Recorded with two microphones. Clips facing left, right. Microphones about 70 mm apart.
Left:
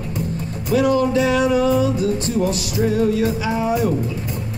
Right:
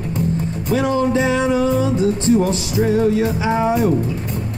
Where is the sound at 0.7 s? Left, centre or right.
Right.